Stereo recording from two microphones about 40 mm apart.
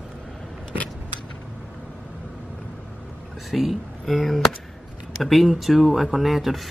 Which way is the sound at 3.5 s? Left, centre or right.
Centre.